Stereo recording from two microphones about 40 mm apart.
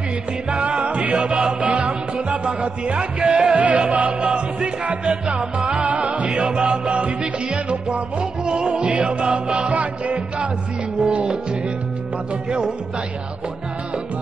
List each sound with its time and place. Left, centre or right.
0.5 s music: right
5.9 s music: right
11.0 s music: right
12.4 s music: right